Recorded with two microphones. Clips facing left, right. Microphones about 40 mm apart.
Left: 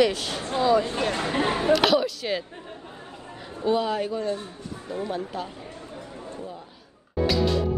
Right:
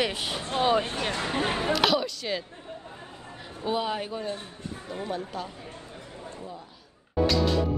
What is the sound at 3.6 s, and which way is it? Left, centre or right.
Speech, centre.